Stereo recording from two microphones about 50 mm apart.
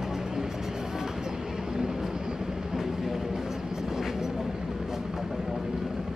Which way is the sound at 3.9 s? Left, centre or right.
Centre.